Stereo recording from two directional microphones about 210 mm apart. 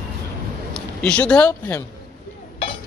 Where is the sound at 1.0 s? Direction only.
5° left (ahead or behind).